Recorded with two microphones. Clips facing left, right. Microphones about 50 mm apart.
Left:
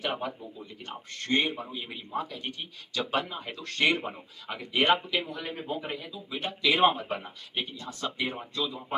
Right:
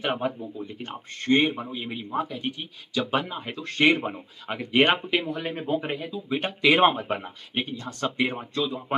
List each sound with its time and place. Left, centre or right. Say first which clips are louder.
0.0 s a man's voice: right 5 dB; right
3.3 s speech: right 4 dB; right
8.0 s speech: right 6 dB; right